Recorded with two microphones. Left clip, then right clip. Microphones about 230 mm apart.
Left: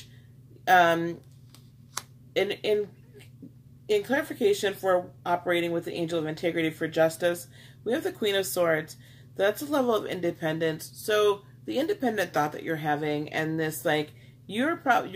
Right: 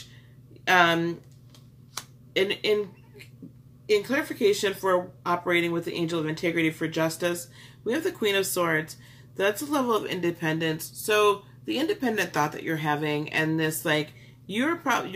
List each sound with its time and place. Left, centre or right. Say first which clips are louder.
0.7 s speech: even; centre
2.0 s a sound: left 1 dB; left
2.3 s speech: right 2 dB; centre
3.8 s speech: right 1 dB; centre